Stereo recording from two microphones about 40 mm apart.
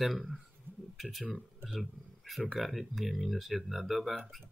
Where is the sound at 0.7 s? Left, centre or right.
Right.